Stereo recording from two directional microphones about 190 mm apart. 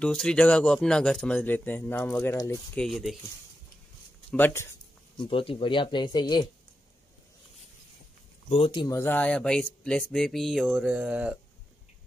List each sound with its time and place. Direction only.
0.0 s speech: 5° left (ahead or behind)
2.8 s speech: centre (ahead or behind)
4.3 s speech: 10° left (ahead or behind)
5.2 s speech: 30° left (ahead or behind)
8.5 s speech: 30° left (ahead or behind)
8.9 s speech: 10° left (ahead or behind); by 11.3 s 5° right (ahead or behind)